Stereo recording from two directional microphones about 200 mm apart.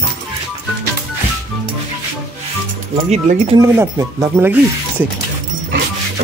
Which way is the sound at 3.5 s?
15° right (ahead or behind).